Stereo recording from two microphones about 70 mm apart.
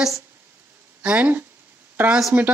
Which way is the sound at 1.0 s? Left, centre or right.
Right.